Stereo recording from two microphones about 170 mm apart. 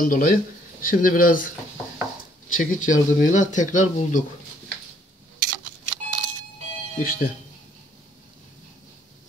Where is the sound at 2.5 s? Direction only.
50° left (ahead or behind).